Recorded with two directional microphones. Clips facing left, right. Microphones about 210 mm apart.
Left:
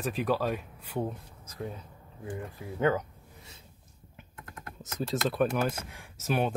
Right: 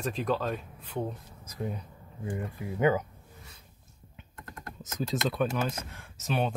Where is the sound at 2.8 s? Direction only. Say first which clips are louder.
Right 1 dB; 10° right (ahead or behind).